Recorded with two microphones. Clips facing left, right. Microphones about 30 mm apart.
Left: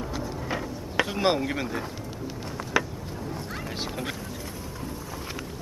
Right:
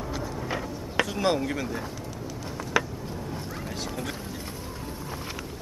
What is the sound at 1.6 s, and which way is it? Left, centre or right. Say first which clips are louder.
Speech: left 1 dB; left.